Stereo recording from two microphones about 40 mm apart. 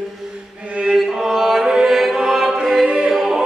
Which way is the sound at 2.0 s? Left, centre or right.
Centre.